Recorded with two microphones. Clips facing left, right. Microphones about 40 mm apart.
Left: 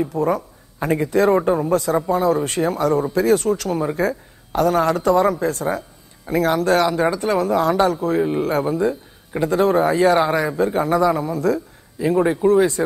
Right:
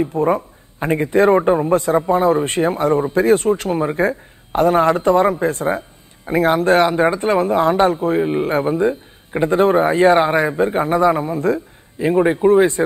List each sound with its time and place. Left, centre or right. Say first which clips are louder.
0.0 s a man's voice: right 3 dB; right